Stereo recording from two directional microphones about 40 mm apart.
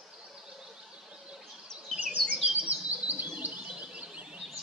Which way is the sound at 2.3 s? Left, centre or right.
Right.